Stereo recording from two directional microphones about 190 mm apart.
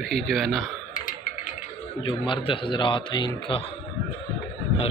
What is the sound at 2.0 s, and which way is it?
A man's voice, 25° left (ahead or behind).